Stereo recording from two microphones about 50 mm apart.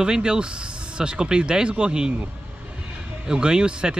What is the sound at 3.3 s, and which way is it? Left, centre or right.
Speech, centre.